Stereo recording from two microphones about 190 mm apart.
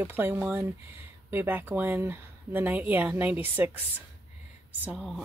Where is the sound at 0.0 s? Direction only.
10° right (ahead or behind).